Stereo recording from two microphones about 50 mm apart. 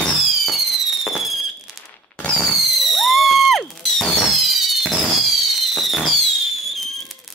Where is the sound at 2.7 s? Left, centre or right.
Centre.